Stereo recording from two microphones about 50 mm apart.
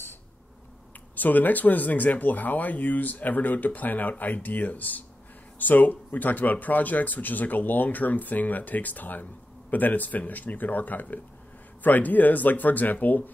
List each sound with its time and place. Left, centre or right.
1.1 s speech: left